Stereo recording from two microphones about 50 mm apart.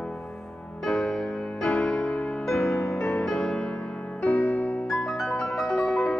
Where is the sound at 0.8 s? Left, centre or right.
Centre.